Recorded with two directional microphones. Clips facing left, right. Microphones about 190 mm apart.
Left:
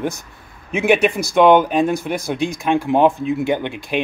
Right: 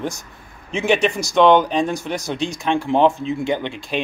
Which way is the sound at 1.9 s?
55° left (ahead or behind).